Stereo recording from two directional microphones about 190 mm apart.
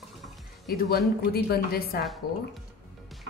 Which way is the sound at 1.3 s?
55° left (ahead or behind).